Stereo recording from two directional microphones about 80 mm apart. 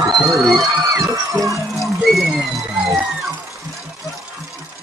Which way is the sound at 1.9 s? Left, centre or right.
Centre.